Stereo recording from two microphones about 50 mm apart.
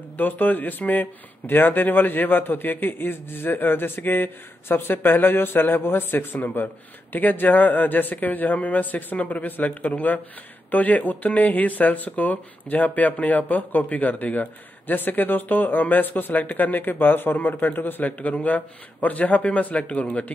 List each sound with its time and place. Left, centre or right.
0.2 s a man's voice: left